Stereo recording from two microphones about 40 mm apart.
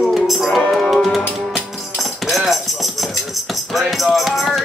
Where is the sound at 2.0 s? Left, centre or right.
Centre.